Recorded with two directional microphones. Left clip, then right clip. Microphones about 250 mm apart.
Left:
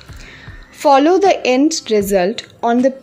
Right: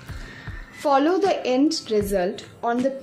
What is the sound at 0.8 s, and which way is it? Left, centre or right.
A woman's voice, left.